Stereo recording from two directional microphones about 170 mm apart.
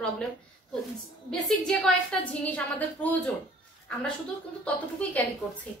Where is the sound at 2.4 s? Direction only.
10° left (ahead or behind).